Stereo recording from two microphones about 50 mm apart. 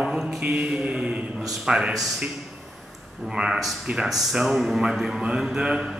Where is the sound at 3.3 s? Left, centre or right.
Centre.